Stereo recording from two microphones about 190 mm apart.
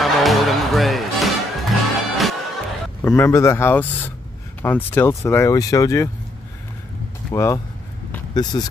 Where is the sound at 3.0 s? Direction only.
15° left (ahead or behind).